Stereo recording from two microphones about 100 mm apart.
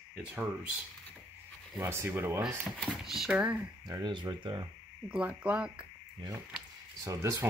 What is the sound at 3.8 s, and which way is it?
Speech, 45° right (ahead or behind).